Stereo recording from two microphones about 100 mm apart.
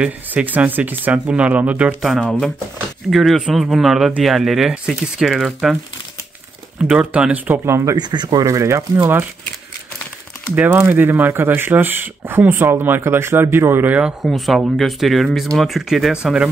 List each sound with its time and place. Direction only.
0.0 s speech: 15° right (ahead or behind)
3.1 s speech: centre (ahead or behind)
6.9 s speech: 10° right (ahead or behind); by 8.0 s 30° right (ahead or behind)
8.0 s speech: 45° right (ahead or behind); by 9.2 s 25° right (ahead or behind)
10.5 s speech: 15° right (ahead or behind)
14.2 s speech: centre (ahead or behind)